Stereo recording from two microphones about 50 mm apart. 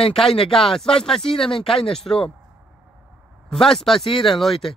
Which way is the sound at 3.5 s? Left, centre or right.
Centre.